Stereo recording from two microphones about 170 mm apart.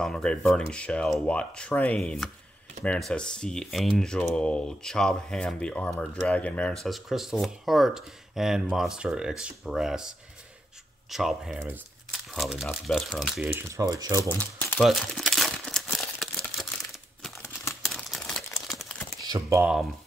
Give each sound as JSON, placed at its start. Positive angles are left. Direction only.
{"t": 0.0, "sound": "speech", "side_deg": 5}
{"t": 13.4, "sound": "speech", "side_deg": -15}
{"t": 14.4, "sound": "speech", "side_deg": 10}
{"t": 14.9, "sound": "crumpling", "side_deg": 0}
{"t": 17.4, "sound": "crumpling", "side_deg": 15}
{"t": 17.8, "sound": "crumpling", "side_deg": 0}
{"t": 19.2, "sound": "speech", "side_deg": -25}
{"t": 19.6, "sound": "speech", "side_deg": -5}